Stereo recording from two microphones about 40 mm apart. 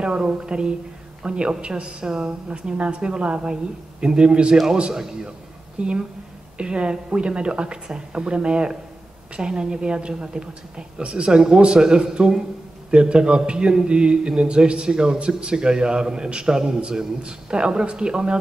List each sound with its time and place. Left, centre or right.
0.0 s a man's voice: right